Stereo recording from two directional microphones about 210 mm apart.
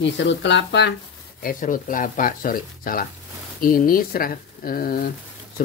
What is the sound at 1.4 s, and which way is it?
Speech, 40° left (ahead or behind).